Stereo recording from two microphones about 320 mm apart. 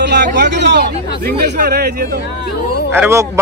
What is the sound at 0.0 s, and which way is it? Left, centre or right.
Speech, right.